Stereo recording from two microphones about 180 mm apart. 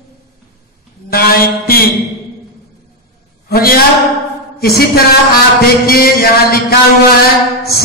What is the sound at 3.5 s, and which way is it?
Music, 55° left (ahead or behind).